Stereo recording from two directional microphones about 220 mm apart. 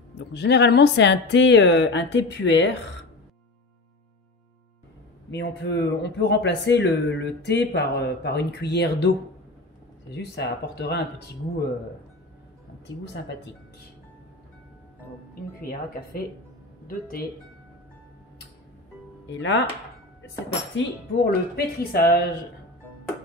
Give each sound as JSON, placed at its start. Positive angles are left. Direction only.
{"t": 0.2, "sound": "speech", "side_deg": 50}
{"t": 5.3, "sound": "speech", "side_deg": 50}
{"t": 10.1, "sound": "speech", "side_deg": 50}
{"t": 12.8, "sound": "speech", "side_deg": 50}
{"t": 16.1, "sound": "speech", "side_deg": 40}
{"t": 19.3, "sound": "chopping", "side_deg": 55}
{"t": 20.4, "sound": "speech", "side_deg": 45}